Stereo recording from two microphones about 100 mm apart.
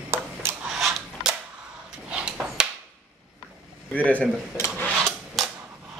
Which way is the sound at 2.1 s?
10° right (ahead or behind).